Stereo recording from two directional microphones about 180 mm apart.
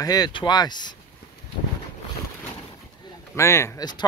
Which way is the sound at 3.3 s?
15° left (ahead or behind).